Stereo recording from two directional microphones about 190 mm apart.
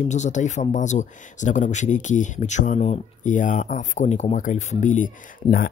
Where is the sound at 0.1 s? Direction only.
40° left (ahead or behind).